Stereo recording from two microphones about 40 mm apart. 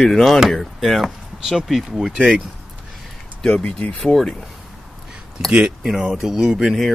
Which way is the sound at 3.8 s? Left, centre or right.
Left.